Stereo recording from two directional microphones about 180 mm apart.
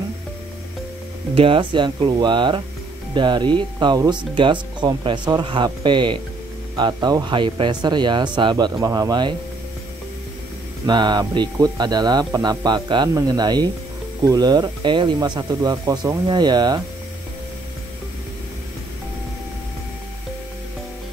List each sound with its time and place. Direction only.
1.3 s speech: 30° right (ahead or behind)
10.9 s speech: 25° right (ahead or behind)